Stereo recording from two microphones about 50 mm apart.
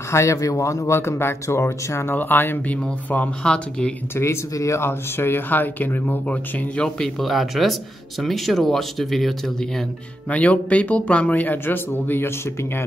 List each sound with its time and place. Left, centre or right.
0.1 s speech: left
2.1 s speech: left
2.7 s speech: left
3.4 s speech: centre
4.2 s speech: left
4.8 s speech: left
7.2 s speech: centre
10.3 s speech: left